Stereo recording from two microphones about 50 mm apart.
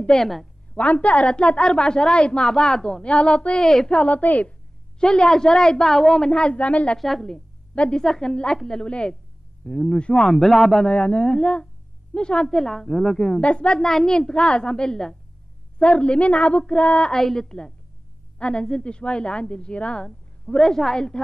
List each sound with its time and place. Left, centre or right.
0.2 s a woman's voice: centre
0.7 s a woman's voice: left
3.6 s a woman's voice: centre
4.0 s a woman's voice: left
5.0 s a woman's voice: centre
7.0 s a woman's voice: centre
7.7 s a woman's voice: left
8.0 s a woman's voice: centre
10.3 s a woman's voice: centre
10.9 s a woman's voice: left
13.4 s a woman's voice: left
17.1 s a woman's voice: centre
20.5 s a woman's voice: centre